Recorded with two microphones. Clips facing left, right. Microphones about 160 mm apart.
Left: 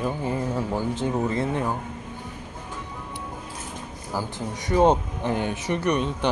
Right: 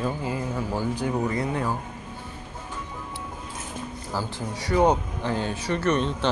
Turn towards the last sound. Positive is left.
turn(degrees=15)  # may be behind; listen again after turning